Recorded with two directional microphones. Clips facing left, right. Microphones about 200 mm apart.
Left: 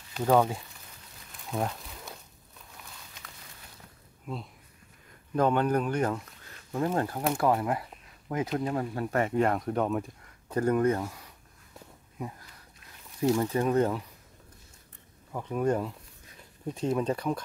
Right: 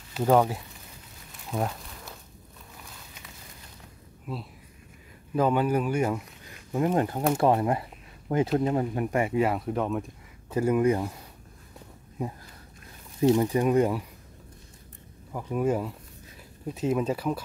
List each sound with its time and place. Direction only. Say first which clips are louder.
0.1 s speech: right 2 dB; 5° right (ahead or behind)
1.5 s a sound: right 2 dB; centre (ahead or behind)
4.3 s speech: right 1 dB; 5° right (ahead or behind)
13.2 s speech: right 4 dB; 20° right (ahead or behind)
15.3 s speech: right 1 dB; 5° right (ahead or behind)